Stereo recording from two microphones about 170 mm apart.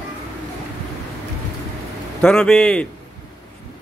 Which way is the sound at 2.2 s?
5° left (ahead or behind).